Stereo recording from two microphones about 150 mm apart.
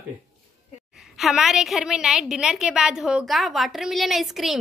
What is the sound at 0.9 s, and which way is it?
A woman's voice, centre (ahead or behind).